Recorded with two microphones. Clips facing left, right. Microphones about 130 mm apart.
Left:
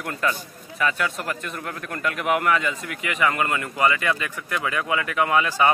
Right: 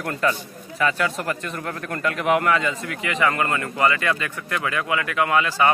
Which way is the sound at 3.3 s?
15° left (ahead or behind).